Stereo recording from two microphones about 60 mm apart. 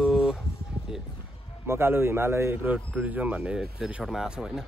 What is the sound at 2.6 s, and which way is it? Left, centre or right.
Speech, right.